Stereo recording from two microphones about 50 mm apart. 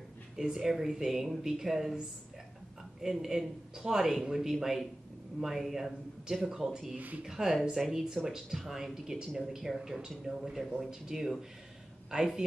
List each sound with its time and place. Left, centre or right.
0.4 s speech: centre
3.0 s speech: centre
7.0 s speech: right
7.2 s speech: centre